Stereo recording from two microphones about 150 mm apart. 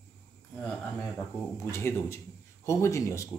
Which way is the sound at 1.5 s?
20° left (ahead or behind).